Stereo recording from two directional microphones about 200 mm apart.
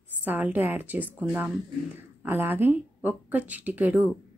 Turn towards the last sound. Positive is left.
turn(degrees=-10)  # may be behind; listen again after turning